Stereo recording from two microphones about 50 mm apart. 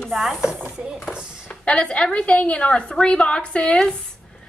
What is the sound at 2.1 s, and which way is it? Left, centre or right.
A woman's voice, left.